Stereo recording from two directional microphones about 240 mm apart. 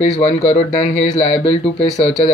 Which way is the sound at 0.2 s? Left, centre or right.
Left.